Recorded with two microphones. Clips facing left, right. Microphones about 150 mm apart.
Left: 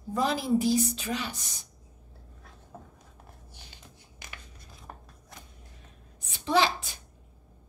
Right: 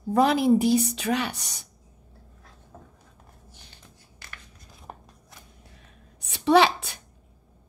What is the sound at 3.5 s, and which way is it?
Music, 15° left (ahead or behind).